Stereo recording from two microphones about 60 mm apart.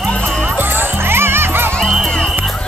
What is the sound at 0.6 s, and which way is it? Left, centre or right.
Music, right.